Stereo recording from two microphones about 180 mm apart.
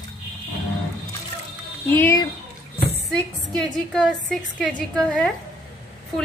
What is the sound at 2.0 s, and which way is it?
Speech, 15° left (ahead or behind).